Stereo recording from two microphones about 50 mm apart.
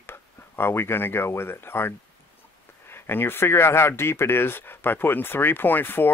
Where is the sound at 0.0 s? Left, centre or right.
Left.